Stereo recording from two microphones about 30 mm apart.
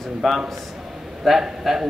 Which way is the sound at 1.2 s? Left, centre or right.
Centre.